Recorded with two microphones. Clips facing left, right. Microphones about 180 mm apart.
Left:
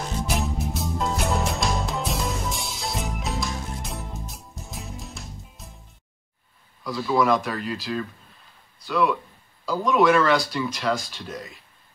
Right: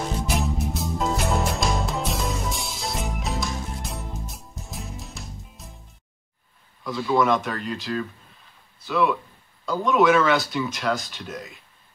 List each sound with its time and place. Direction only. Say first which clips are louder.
0.3 s music: even; centre (ahead or behind)
6.8 s speech: right 1 dB; centre (ahead or behind)